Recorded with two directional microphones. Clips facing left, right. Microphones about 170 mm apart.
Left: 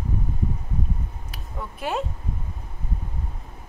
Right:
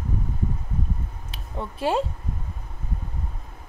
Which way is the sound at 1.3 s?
30° right (ahead or behind).